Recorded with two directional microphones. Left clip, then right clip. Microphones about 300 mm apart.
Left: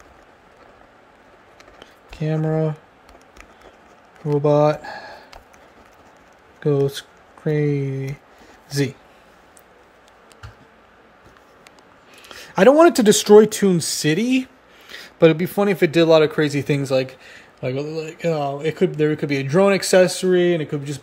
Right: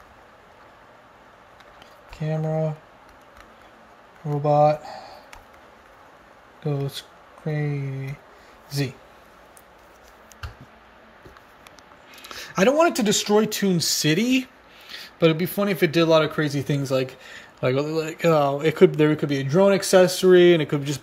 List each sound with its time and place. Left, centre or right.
2.2 s speech: centre
4.4 s speech: centre
6.6 s speech: centre
12.3 s a sound: centre
12.6 s speech: left; by 21.0 s centre